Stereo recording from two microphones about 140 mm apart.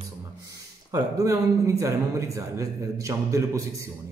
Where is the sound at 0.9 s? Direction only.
25° right (ahead or behind).